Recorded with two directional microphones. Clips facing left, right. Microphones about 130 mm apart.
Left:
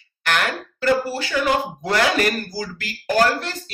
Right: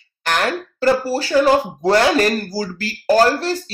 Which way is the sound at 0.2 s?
35° right (ahead or behind).